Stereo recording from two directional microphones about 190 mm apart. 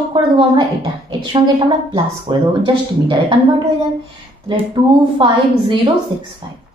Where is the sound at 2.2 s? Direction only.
25° right (ahead or behind).